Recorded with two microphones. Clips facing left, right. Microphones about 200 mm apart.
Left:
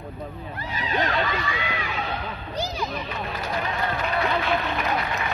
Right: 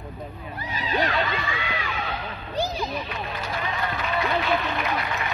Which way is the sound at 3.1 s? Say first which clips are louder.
Left 1 dB; centre (ahead or behind).